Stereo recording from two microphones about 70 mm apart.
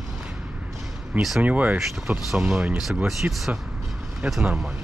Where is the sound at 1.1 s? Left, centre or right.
Centre.